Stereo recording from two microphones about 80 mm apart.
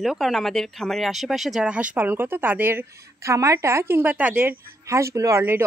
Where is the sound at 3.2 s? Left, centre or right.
Right.